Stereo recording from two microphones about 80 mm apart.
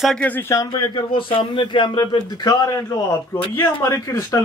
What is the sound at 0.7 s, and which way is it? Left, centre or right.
A man's voice, left.